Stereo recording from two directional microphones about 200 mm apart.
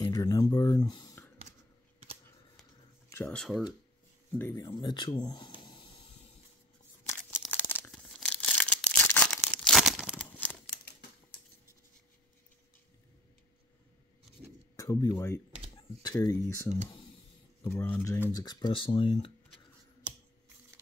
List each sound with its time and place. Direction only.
0.0 s a sound: 15° left (ahead or behind)
3.3 s speech: 5° left (ahead or behind)
4.6 s speech: 25° left (ahead or behind)
7.4 s tearing: 10° left (ahead or behind)
10.2 s crumpling: 10° left (ahead or behind)
14.8 s speech: 20° left (ahead or behind)
17.6 s speech: 10° left (ahead or behind)